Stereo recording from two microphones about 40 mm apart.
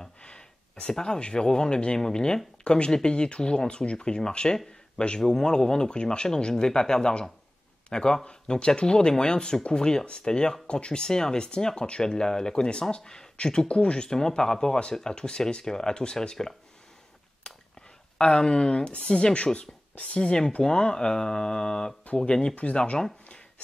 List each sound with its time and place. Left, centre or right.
0.2 s a man's voice: left
17.4 s a sound: left
18.1 s speech: centre